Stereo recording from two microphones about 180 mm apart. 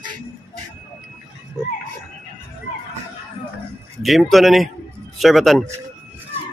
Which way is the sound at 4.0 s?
Centre (ahead or behind).